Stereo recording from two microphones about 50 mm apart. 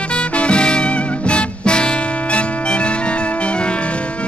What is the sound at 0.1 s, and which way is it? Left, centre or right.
Music, left.